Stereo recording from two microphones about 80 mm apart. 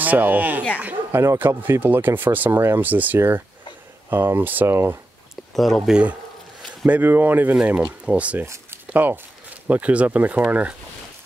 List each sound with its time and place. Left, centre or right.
0.0 s speech: right
5.3 s speech: centre
6.9 s speech: right